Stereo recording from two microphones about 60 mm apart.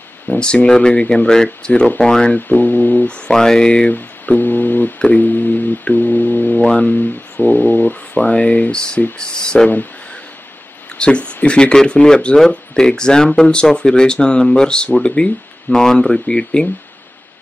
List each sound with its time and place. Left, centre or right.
0.3 s speech: centre
2.3 s speech: left
3.1 s speech: centre
3.9 s music: left
4.9 s speech: left
6.6 s speech: centre
7.0 s speech: left; by 9.7 s centre
11.0 s speech: centre